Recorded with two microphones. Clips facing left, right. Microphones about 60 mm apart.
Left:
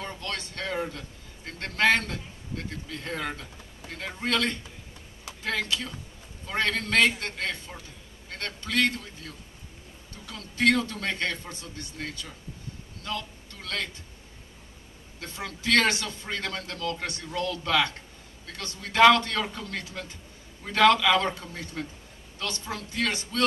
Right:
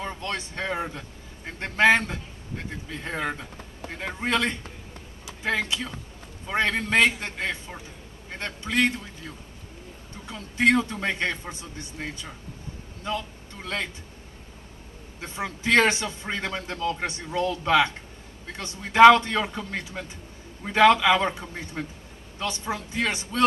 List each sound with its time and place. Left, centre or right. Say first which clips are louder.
0.0 s a man's voice: right 3 dB; right
15.1 s a man's voice: right 5 dB; right